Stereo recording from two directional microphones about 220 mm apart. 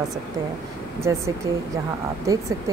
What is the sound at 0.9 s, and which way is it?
A woman's voice, 10° right (ahead or behind).